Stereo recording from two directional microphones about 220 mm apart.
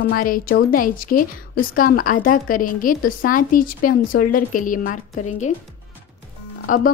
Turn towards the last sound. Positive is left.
turn(degrees=35)  # may be behind; listen again after turning